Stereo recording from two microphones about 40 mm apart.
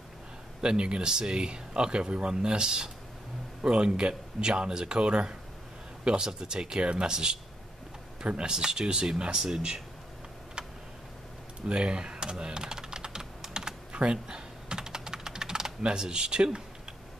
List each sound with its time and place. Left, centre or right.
0.6 s speech: right
11.6 s typing: right
15.8 s speech: right